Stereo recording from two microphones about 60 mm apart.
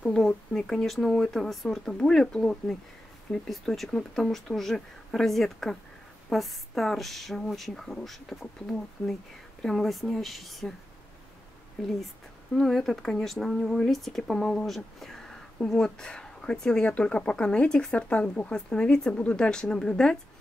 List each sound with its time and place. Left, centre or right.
0.0 s speech: centre
3.4 s speech: centre
11.8 s speech: centre